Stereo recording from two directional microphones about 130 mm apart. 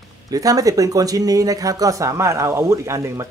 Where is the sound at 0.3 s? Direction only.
30° right (ahead or behind).